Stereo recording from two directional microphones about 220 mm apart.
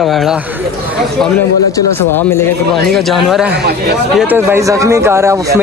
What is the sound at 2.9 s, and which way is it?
Speech, centre (ahead or behind).